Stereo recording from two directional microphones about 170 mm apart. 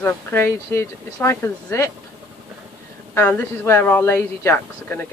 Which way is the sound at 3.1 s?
10° left (ahead or behind).